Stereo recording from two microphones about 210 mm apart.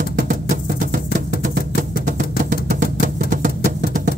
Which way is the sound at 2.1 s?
40° right (ahead or behind).